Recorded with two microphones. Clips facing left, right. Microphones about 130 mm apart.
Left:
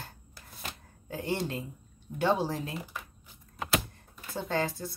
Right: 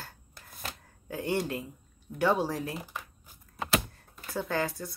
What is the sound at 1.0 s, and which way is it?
Speech, 25° left (ahead or behind).